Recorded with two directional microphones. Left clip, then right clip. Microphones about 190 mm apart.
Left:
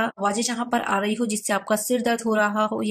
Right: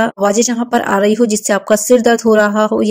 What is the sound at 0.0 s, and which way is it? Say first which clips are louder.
Speech: right 11 dB; 30° right (ahead or behind).